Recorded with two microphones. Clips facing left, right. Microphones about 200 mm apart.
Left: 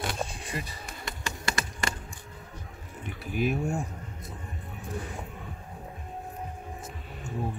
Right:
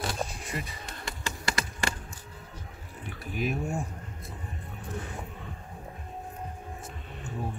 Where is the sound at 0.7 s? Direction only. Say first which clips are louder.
Even; centre (ahead or behind).